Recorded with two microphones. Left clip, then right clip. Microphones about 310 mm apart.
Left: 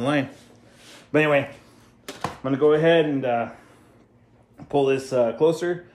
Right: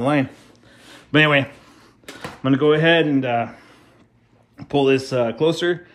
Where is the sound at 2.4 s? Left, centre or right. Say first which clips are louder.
Right 2 dB; right.